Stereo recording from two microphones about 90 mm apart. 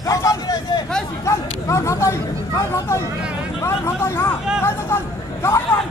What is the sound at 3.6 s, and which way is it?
Speech, 30° left (ahead or behind).